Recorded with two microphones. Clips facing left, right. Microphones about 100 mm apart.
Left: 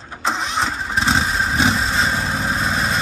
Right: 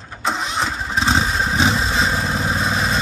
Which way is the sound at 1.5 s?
15° right (ahead or behind).